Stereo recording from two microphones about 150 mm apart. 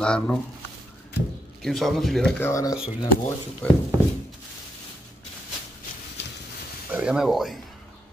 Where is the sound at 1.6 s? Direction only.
Centre (ahead or behind).